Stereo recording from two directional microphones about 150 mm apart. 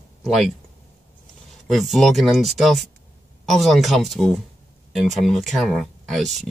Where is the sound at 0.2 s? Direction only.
Centre (ahead or behind).